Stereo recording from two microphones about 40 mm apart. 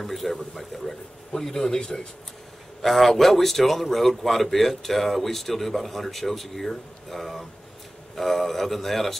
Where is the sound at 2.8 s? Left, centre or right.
Centre.